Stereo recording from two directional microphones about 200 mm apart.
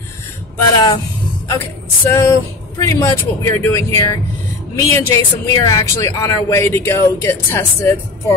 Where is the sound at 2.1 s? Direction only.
15° left (ahead or behind).